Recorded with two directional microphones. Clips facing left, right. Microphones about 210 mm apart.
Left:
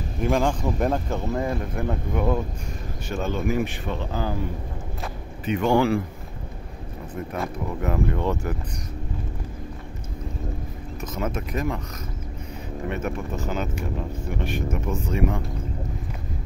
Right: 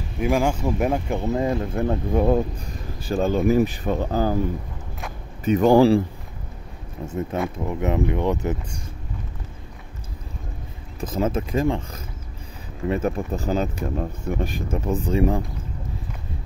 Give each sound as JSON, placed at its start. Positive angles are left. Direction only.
{"t": 0.2, "sound": "speech", "side_deg": -10}
{"t": 5.4, "sound": "speech", "side_deg": -40}
{"t": 7.2, "sound": "speech", "side_deg": -25}
{"t": 11.0, "sound": "speech", "side_deg": -30}
{"t": 12.9, "sound": "speech", "side_deg": -35}